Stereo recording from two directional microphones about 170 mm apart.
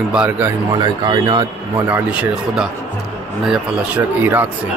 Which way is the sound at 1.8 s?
10° right (ahead or behind).